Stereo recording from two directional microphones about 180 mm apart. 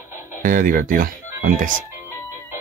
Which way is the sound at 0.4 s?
50° right (ahead or behind).